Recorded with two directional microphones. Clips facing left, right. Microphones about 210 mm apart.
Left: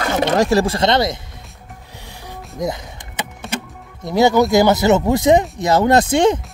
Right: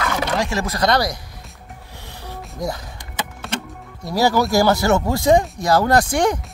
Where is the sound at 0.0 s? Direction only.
25° left (ahead or behind).